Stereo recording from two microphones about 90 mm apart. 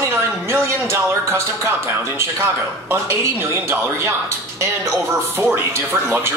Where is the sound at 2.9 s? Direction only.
30° right (ahead or behind).